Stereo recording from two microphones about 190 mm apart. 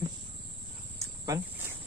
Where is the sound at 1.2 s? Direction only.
15° right (ahead or behind).